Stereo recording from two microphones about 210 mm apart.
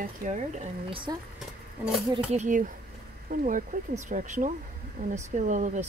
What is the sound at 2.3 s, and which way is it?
Speech, 35° right (ahead or behind).